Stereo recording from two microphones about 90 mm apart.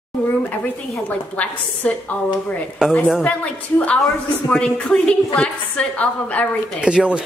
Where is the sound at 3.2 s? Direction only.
15° left (ahead or behind).